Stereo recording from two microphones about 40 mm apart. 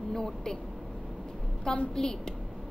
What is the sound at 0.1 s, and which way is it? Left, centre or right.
Speech, centre.